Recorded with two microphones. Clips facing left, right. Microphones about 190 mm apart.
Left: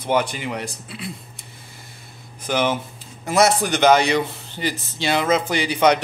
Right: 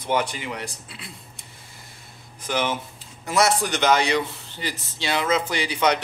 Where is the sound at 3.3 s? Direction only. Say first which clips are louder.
Left 4 dB; 50° left (ahead or behind).